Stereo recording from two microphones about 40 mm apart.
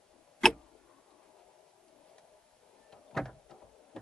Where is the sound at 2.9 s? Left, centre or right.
Centre.